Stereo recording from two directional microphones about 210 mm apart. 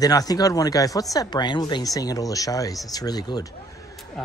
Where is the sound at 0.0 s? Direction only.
15° left (ahead or behind).